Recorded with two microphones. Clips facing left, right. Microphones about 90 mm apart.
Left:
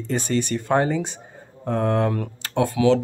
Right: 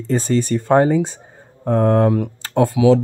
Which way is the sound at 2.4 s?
35° right (ahead or behind).